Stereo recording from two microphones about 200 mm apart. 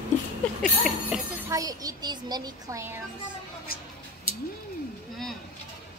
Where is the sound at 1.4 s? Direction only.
15° right (ahead or behind).